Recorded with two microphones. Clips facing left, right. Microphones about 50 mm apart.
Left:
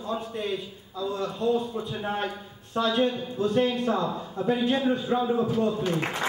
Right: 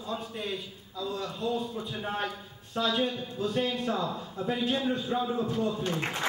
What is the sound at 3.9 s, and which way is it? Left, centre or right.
A man's voice, centre.